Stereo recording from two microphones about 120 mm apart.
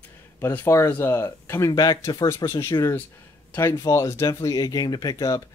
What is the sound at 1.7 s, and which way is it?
Speech, 35° left (ahead or behind).